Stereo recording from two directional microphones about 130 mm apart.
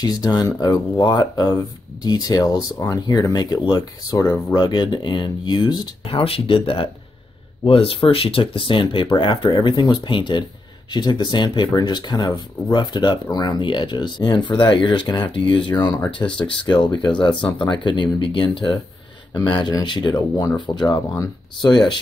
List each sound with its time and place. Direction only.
0.0 s speech: 30° left (ahead or behind)
6.0 s speech: 45° left (ahead or behind)